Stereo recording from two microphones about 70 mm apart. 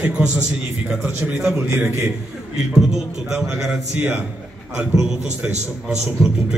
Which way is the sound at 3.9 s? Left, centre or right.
Right.